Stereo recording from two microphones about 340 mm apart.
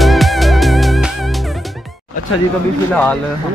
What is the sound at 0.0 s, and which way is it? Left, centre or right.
Music, centre.